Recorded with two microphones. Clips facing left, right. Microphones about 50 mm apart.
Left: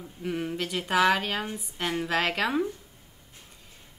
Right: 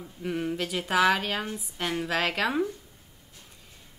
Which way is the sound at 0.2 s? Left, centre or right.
Centre.